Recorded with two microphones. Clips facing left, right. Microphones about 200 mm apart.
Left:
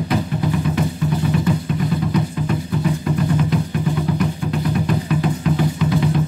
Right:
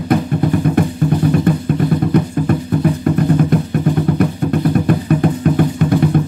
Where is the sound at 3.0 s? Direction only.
50° right (ahead or behind).